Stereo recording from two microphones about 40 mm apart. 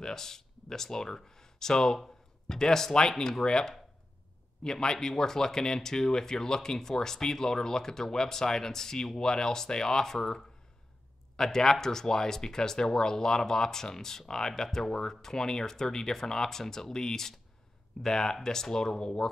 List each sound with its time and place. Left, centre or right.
0.0 s speech: centre